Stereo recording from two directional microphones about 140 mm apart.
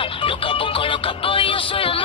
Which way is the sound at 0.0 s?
40° left (ahead or behind).